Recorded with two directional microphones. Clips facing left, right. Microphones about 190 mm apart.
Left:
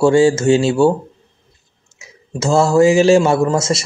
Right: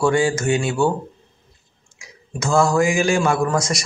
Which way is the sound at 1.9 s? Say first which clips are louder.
Left 5 dB; 25° left (ahead or behind).